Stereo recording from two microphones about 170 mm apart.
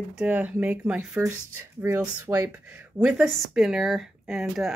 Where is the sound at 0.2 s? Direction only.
10° right (ahead or behind).